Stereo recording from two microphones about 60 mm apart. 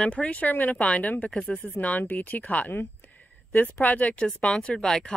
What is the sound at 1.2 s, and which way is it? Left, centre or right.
Speech, centre.